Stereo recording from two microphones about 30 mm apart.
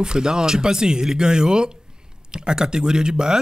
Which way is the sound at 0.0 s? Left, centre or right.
Right.